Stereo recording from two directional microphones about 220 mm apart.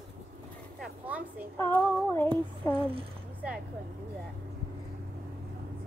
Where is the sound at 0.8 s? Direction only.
5° right (ahead or behind).